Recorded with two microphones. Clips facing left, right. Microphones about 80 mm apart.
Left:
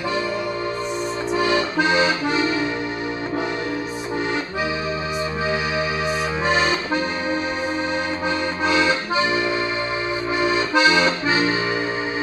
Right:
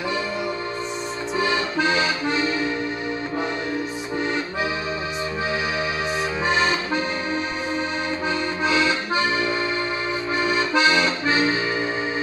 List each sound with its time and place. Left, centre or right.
1.5 s accordion: centre
8.6 s accordion: centre
10.7 s accordion: centre